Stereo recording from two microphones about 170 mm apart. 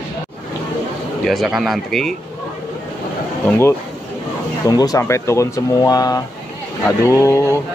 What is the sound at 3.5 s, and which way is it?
Speech, 15° left (ahead or behind).